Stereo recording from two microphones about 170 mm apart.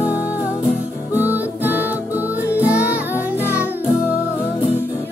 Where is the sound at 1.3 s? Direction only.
10° right (ahead or behind).